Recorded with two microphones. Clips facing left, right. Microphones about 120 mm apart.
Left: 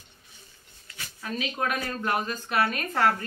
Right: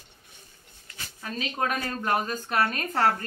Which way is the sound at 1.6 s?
40° right (ahead or behind).